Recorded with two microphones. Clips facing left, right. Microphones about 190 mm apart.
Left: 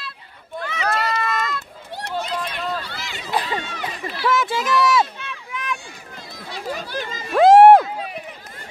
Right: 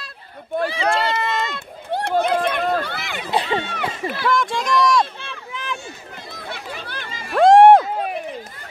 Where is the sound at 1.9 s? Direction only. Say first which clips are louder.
Right 8 dB; 55° right (ahead or behind).